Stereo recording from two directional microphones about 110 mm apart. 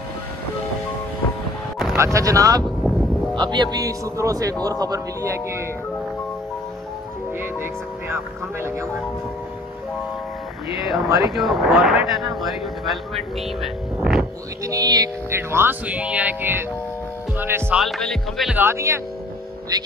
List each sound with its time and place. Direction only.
2.0 s speech: 30° right (ahead or behind)
3.3 s speech: 45° right (ahead or behind)
8.1 s speech: 25° right (ahead or behind)
10.9 s speech: centre (ahead or behind)
13.6 s vehicle: 5° right (ahead or behind)
14.6 s speech: 30° right (ahead or behind)
15.3 s speech: 20° right (ahead or behind)
17.7 s speech: centre (ahead or behind)
18.5 s speech: 20° right (ahead or behind)
19.7 s speech: 40° right (ahead or behind)